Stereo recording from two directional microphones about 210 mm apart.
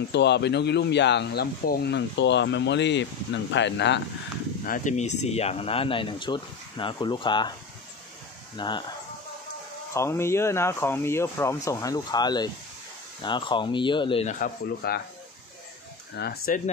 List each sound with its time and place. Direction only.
0.1 s speech: 55° left (ahead or behind)
4.6 s speech: 40° left (ahead or behind); by 7.5 s 20° left (ahead or behind)
8.5 s speech: 20° left (ahead or behind)
9.9 s speech: 10° left (ahead or behind)
14.4 s speech: 45° left (ahead or behind)
16.2 s speech: 45° left (ahead or behind)